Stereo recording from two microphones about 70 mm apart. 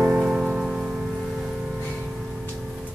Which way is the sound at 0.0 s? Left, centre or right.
Centre.